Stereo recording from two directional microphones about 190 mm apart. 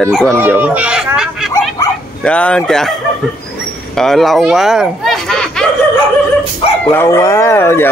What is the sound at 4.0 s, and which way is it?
Speech, centre (ahead or behind).